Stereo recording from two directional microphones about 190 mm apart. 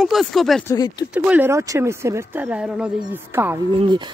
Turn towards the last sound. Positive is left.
turn(degrees=-25)  # may be behind; listen again after turning